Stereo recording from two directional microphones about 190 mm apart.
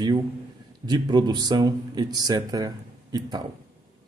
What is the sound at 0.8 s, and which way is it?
Speech, 25° right (ahead or behind).